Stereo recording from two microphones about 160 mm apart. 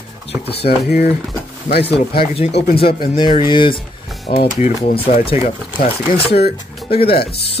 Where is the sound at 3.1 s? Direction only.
30° left (ahead or behind).